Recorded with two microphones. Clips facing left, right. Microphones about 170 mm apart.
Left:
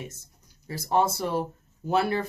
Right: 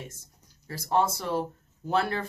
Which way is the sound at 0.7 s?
15° left (ahead or behind).